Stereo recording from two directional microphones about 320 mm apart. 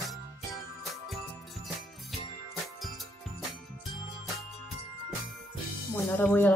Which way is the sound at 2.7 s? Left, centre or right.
Centre.